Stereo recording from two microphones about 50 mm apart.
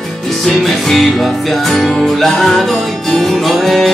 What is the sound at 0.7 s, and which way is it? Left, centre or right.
Music, centre.